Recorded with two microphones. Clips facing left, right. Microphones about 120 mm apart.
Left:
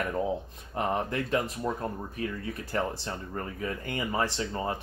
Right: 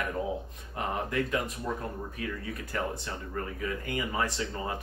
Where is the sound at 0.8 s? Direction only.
30° left (ahead or behind).